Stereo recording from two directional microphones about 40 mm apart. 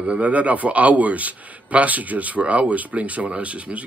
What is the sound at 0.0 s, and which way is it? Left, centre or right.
Speech, right.